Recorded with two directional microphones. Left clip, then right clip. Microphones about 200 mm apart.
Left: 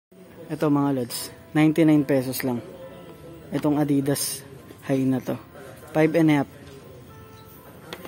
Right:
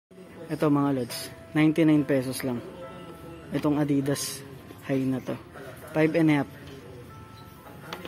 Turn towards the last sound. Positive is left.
turn(degrees=20)  # may be behind; listen again after turning